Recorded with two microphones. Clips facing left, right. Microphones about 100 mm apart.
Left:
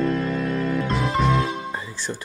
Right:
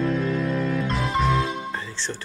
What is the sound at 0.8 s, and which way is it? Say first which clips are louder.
Music: left 1 dB; centre (ahead or behind).